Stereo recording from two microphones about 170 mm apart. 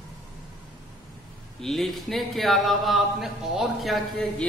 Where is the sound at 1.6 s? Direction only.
Centre (ahead or behind).